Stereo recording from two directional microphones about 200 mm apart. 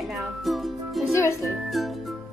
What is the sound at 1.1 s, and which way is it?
Speech, 15° left (ahead or behind).